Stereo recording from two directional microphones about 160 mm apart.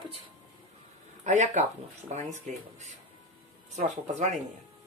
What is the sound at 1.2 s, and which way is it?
Speech, 50° right (ahead or behind).